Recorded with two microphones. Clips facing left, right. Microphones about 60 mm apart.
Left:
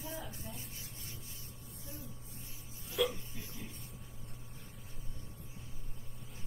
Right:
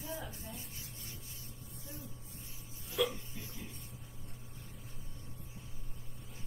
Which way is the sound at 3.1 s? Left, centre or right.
Left.